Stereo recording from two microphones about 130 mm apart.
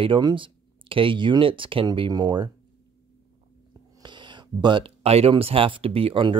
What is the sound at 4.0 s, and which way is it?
Speech, 35° right (ahead or behind).